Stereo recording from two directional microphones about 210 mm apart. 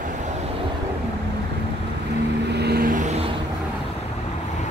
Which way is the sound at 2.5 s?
50° right (ahead or behind).